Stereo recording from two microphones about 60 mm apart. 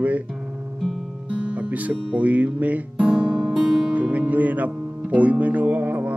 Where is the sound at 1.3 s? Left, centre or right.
Right.